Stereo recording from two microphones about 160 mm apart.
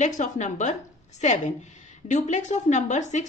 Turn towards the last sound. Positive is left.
turn(degrees=45)  # may be behind; listen again after turning